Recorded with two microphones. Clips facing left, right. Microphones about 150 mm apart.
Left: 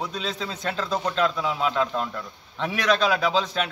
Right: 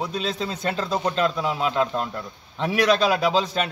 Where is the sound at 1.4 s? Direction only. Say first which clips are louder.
Right 1 dB; 5° right (ahead or behind).